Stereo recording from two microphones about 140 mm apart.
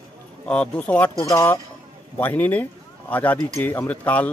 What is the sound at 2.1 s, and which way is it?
Speech, 10° left (ahead or behind).